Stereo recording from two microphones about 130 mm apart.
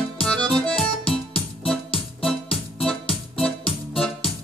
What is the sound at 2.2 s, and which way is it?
Music, 5° left (ahead or behind).